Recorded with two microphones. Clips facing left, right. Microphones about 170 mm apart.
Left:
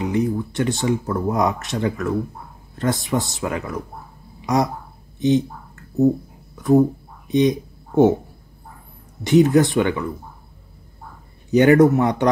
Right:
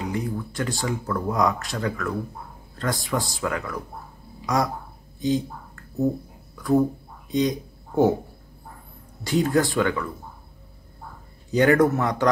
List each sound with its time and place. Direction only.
0.0 s speech: 25° left (ahead or behind)
5.2 s a sound: 20° left (ahead or behind)
9.2 s speech: 20° left (ahead or behind)
11.5 s speech: 25° left (ahead or behind)